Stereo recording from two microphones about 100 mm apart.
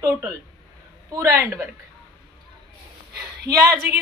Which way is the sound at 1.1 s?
30° right (ahead or behind).